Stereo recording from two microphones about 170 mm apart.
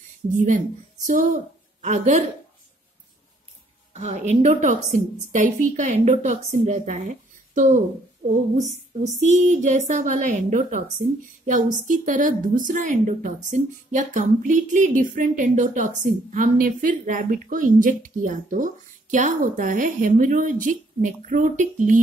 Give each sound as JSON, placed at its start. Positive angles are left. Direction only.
{"t": 0.3, "sound": "a woman's voice", "side_deg": -50}
{"t": 3.9, "sound": "a woman's voice", "side_deg": -45}
{"t": 11.9, "sound": "a woman's voice", "side_deg": -50}